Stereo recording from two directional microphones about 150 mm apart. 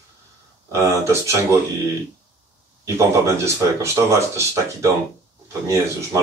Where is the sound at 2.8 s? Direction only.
20° right (ahead or behind).